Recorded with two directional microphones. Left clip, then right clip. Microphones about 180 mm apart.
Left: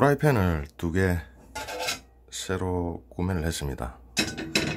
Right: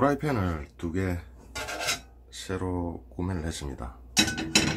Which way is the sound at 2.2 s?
50° left (ahead or behind).